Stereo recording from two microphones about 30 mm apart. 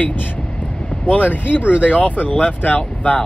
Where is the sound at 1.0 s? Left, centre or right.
Left.